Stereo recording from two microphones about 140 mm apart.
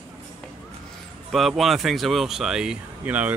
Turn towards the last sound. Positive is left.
turn(degrees=-10)  # may be behind; listen again after turning